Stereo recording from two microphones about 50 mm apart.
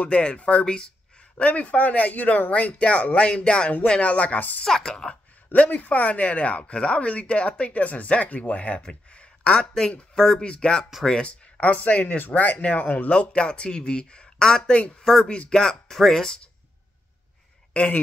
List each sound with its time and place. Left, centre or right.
0.0 s speech: left
4.6 s speech: centre
5.5 s speech: left
11.7 s speech: left; by 16.3 s centre
17.8 s speech: left